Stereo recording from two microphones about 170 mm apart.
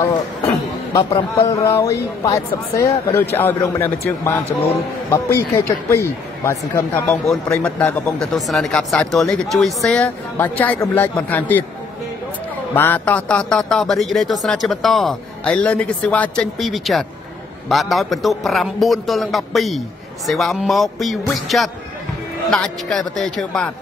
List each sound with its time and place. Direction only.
0.9 s a man's voice: 15° left (ahead or behind)
7.2 s speech: centre (ahead or behind)
12.7 s speech: 10° left (ahead or behind)